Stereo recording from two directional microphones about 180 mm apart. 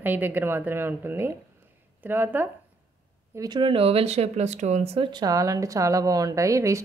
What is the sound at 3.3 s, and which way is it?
Speech, 25° right (ahead or behind).